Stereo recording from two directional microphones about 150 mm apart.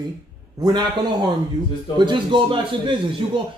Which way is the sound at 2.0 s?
30° right (ahead or behind).